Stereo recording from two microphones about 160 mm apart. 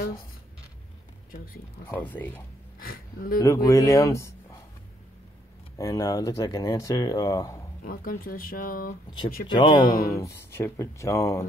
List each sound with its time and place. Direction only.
0.0 s a sound: 65° left (ahead or behind)
1.9 s speech: 10° left (ahead or behind)
2.8 s speech: 65° left (ahead or behind)
3.3 s speech: 20° left (ahead or behind)
5.8 s speech: 20° left (ahead or behind)
7.8 s speech: 65° left (ahead or behind)
9.5 s speech: 30° left (ahead or behind)